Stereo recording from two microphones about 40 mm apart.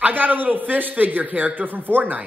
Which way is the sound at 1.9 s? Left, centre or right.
Right.